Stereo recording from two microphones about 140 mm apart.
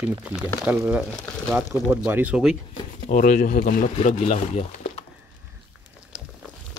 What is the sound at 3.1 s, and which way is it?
Speech, 65° left (ahead or behind).